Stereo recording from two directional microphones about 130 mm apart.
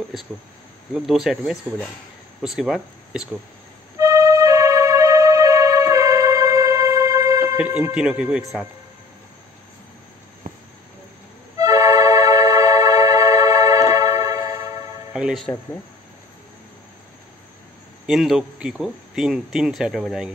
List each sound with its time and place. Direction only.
0.9 s speech: 5° right (ahead or behind)
4.0 s music: 25° right (ahead or behind)
7.5 s speech: 10° right (ahead or behind)
10.4 s cricket: 90° right
11.5 s music: 25° right (ahead or behind)
15.1 s music: 5° right (ahead or behind)
18.0 s speech: 5° right (ahead or behind)